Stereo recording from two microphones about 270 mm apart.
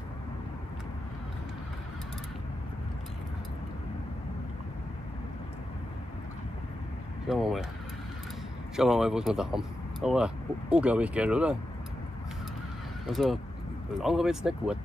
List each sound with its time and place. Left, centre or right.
7.2 s speech: centre
8.7 s speech: centre
13.1 s speech: centre